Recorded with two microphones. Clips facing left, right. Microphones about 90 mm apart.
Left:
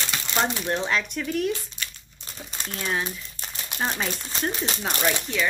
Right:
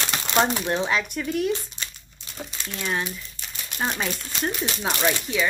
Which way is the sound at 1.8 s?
35° right (ahead or behind).